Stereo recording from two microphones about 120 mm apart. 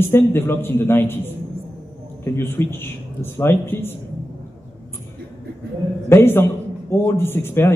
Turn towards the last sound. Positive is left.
turn(degrees=20)  # may be behind; listen again after turning